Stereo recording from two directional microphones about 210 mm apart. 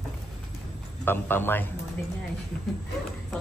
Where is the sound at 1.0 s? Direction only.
10° left (ahead or behind).